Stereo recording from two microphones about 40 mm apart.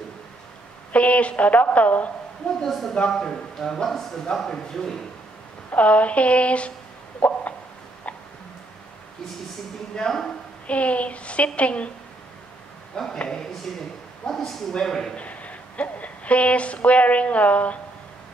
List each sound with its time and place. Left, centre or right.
0.9 s a woman's voice: left
2.6 s a man's voice: centre
5.8 s a woman's voice: left
7.2 s a sound: left
10.1 s a man's voice: centre
10.7 s a woman's voice: left
12.9 s a man's voice: centre
15.1 s a woman's voice: left